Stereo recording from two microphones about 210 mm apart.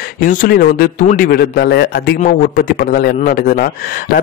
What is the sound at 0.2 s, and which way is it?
Speech, 40° left (ahead or behind).